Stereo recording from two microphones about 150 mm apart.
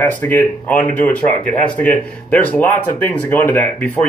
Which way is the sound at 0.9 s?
60° left (ahead or behind).